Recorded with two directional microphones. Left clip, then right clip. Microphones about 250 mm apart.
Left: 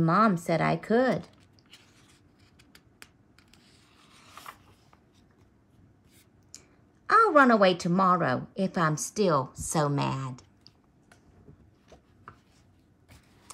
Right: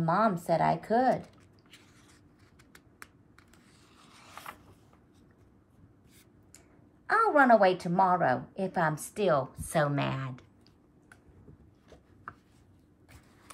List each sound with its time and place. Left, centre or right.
0.0 s a woman's voice: left
3.5 s a sound: centre
7.1 s a woman's voice: left
12.3 s chopping: centre